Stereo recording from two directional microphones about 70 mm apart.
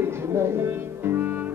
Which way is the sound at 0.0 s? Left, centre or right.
Right.